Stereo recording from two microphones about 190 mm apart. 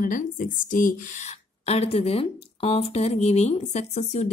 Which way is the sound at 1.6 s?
35° left (ahead or behind).